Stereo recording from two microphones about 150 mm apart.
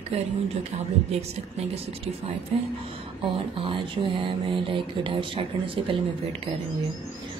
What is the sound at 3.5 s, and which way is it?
Speech, 35° right (ahead or behind).